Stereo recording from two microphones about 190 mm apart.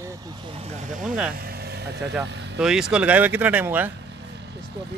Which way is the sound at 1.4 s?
55° right (ahead or behind).